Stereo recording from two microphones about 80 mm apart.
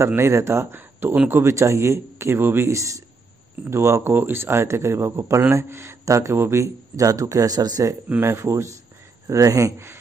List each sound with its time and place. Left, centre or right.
0.0 s speech: right
8.2 s speech: right